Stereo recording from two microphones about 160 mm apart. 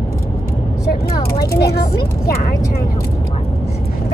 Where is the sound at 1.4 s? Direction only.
75° left (ahead or behind).